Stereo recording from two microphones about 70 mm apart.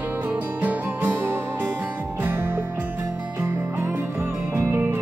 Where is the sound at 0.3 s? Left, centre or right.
Right.